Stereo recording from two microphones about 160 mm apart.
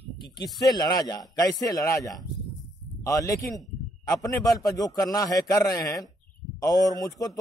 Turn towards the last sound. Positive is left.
turn(degrees=25)  # may be behind; listen again after turning